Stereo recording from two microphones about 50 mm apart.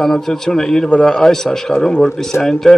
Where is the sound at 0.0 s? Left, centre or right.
Centre.